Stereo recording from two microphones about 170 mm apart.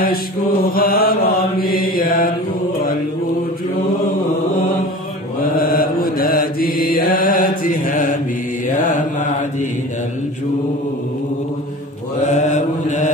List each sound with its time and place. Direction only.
0.0 s mantra: 55° left (ahead or behind)
5.4 s mantra: 55° left (ahead or behind)
12.2 s mantra: 45° left (ahead or behind)